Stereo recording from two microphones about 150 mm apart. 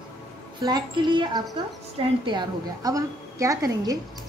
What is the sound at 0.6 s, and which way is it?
A woman's voice, 30° right (ahead or behind).